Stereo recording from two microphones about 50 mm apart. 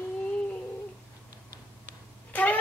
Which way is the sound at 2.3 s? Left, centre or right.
Left.